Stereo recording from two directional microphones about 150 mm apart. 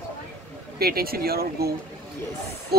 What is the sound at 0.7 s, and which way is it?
Speech, 90° right.